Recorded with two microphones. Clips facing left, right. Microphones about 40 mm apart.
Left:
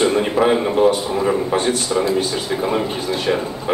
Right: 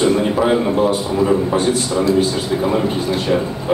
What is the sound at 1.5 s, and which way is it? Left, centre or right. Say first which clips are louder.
Speech: right 1 dB; left.